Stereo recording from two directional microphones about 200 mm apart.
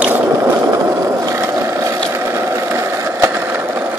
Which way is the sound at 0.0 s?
10° right (ahead or behind).